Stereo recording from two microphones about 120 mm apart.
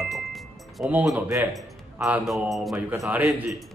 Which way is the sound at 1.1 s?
20° right (ahead or behind).